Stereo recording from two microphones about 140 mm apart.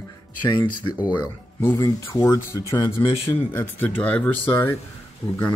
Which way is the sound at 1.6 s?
20° left (ahead or behind).